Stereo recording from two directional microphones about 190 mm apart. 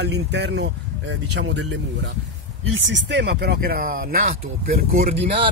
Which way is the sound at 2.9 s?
65° right (ahead or behind).